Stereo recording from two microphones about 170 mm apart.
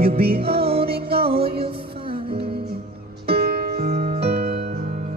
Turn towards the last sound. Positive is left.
turn(degrees=-50)  # may be behind; listen again after turning